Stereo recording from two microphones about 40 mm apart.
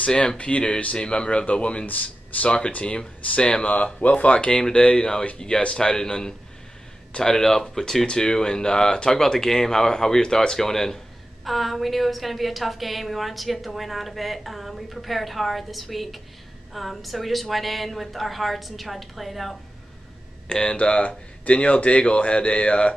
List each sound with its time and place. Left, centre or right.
0.0 s a man's voice: left
1.9 s speech: left
2.8 s a man's voice: left
11.4 s a woman's voice: centre
20.6 s speech: left